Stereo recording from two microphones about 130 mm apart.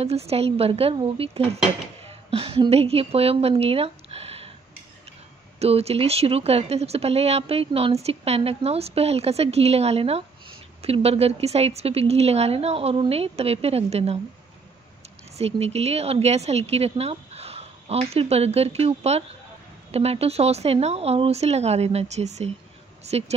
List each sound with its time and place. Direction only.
0.0 s a woman's voice: 50° right (ahead or behind)
5.6 s speech: 50° right (ahead or behind)
15.3 s speech: 55° right (ahead or behind)